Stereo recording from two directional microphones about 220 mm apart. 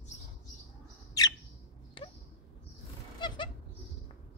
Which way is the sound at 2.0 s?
25° left (ahead or behind).